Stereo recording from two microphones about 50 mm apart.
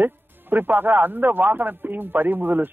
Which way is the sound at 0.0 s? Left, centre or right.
Right.